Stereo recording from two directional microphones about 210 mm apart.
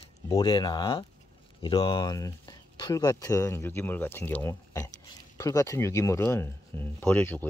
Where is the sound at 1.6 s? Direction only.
20° left (ahead or behind).